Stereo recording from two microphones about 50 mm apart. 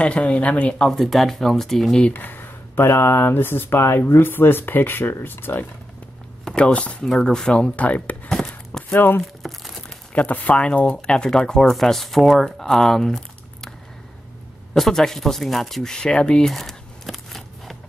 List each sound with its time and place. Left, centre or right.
0.0 s speech: left
0.9 s speech: centre
2.1 s speech: left
6.5 s speech: left
7.1 s speech: centre
7.7 s speech: left
8.3 s a sound: centre
8.9 s speech: left
9.4 s crumpling: centre
10.1 s speech: left; by 13.7 s centre
14.7 s speech: centre
16.4 s a sound: centre